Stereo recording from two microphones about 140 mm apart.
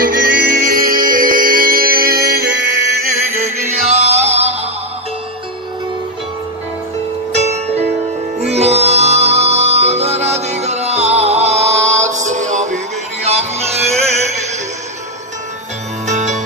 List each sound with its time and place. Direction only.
0.1 s music: 90° right
3.4 s music: 50° right (ahead or behind)
7.3 s music: 50° right (ahead or behind)
16.1 s music: 55° right (ahead or behind)